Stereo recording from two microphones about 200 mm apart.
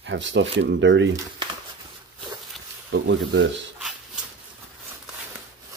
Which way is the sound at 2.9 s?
60° right (ahead or behind).